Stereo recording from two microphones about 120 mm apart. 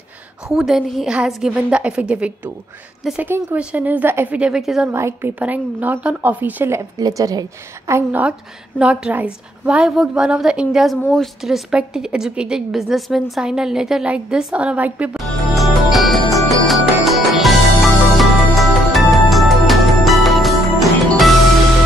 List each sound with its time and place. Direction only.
0.5 s a woman's voice: 5° right (ahead or behind)
4.9 s a woman's voice: 20° right (ahead or behind)
8.1 s a woman's voice: 10° right (ahead or behind)
15.1 s music: centre (ahead or behind)